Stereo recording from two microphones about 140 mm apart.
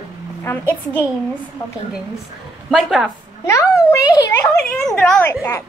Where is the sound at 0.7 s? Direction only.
10° left (ahead or behind).